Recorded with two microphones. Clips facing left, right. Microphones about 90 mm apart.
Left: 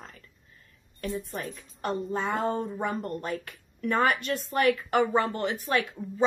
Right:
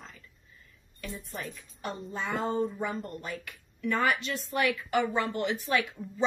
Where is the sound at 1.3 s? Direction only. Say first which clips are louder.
Left 3 dB; 50° left (ahead or behind).